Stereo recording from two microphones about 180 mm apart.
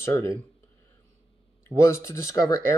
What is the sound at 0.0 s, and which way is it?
Speech, 10° left (ahead or behind).